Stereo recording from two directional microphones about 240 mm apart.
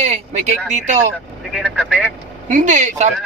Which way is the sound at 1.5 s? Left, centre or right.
Centre.